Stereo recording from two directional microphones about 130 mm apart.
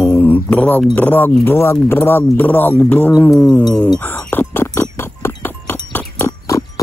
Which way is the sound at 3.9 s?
15° left (ahead or behind).